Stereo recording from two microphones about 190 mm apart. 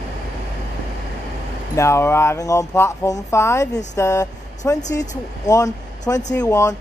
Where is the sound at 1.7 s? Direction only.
15° left (ahead or behind).